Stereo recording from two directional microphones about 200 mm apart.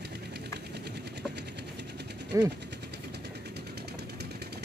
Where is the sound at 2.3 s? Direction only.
15° right (ahead or behind).